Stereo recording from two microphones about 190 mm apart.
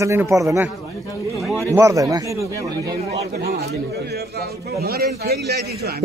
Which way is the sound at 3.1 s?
60° right (ahead or behind).